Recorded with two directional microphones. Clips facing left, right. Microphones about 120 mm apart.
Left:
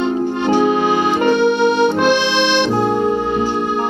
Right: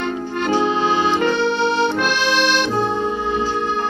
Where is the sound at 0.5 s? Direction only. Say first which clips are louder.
Left 3 dB; 15° left (ahead or behind).